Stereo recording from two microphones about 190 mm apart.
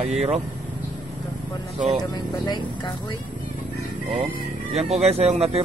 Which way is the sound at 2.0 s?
20° left (ahead or behind).